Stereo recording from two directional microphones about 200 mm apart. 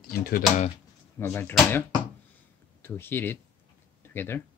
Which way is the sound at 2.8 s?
10° left (ahead or behind).